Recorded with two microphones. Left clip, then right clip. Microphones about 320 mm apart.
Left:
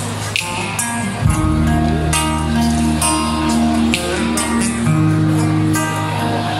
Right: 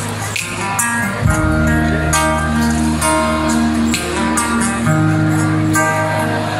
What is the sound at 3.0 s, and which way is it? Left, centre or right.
Music, centre.